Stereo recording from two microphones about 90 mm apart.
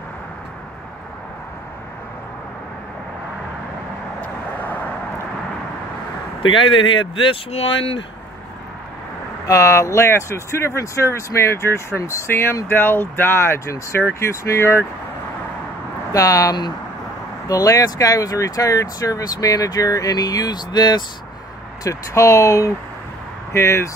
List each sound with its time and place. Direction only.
4.2 s vehicle: 20° left (ahead or behind)
6.4 s speech: 70° left (ahead or behind); by 8.0 s 90° left
9.5 s speech: 35° left (ahead or behind)
16.1 s speech: 40° left (ahead or behind)
21.8 s speech: 35° left (ahead or behind)